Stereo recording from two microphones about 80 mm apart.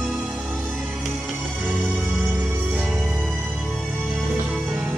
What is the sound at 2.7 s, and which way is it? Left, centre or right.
Music, centre.